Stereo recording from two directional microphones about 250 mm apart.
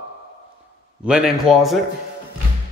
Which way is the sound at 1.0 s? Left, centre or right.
Centre.